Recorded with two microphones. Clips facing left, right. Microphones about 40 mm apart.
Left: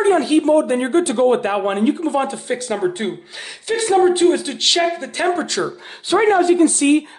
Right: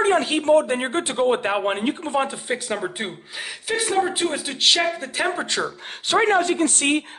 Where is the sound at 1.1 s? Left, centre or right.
Centre.